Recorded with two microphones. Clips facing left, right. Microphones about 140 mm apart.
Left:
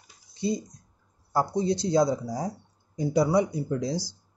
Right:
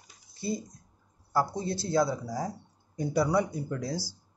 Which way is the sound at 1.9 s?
15° left (ahead or behind).